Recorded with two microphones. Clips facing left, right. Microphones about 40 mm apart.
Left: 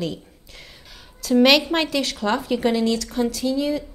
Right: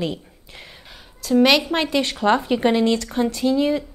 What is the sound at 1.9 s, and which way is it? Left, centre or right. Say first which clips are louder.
A woman's voice: right 4 dB; right.